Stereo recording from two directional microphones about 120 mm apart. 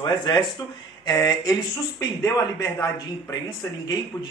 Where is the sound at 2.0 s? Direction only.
30° left (ahead or behind).